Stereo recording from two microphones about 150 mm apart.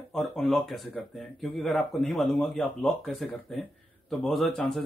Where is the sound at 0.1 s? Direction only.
Centre (ahead or behind).